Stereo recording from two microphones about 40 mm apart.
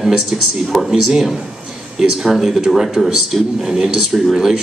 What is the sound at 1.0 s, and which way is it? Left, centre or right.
Speech, centre.